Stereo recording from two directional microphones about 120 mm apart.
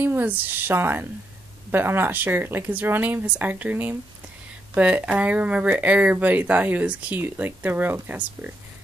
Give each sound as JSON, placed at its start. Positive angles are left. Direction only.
{"t": 0.0, "sound": "speech", "side_deg": -15}